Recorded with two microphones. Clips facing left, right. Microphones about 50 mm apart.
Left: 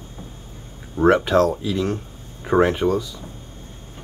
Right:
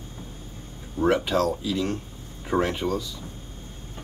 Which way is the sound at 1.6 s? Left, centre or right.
Centre.